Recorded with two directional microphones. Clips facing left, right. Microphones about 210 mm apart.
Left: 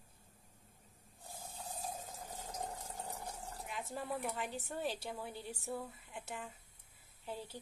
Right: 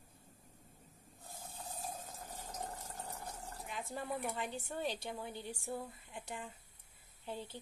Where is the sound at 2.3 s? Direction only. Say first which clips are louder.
Left 1 dB; 15° left (ahead or behind).